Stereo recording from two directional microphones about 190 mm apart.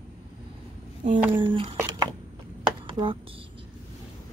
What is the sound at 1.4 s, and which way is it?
Speech, 25° right (ahead or behind).